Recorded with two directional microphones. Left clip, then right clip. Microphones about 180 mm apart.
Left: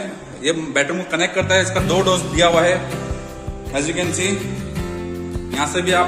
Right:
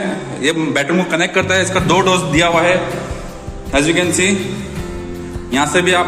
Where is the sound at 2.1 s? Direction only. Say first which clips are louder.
Right 2 dB; 10° left (ahead or behind).